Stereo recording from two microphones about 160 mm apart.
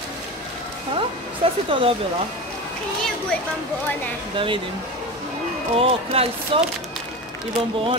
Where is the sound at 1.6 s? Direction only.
35° right (ahead or behind).